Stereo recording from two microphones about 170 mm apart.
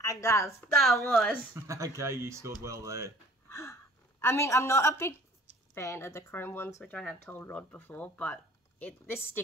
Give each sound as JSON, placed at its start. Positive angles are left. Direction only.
{"t": 0.0, "sound": "speech", "side_deg": 15}
{"t": 0.7, "sound": "a woman's voice", "side_deg": 0}
{"t": 1.5, "sound": "speech", "side_deg": -20}
{"t": 3.4, "sound": "a sound", "side_deg": 15}
{"t": 4.2, "sound": "speech", "side_deg": 15}